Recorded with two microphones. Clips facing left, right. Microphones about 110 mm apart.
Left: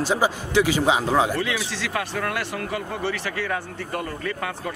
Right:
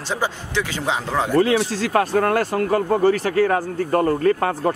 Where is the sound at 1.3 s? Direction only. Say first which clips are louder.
Right 9 dB; 40° right (ahead or behind).